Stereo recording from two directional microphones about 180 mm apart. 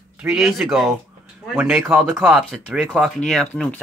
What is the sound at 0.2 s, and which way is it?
Speech, 5° right (ahead or behind).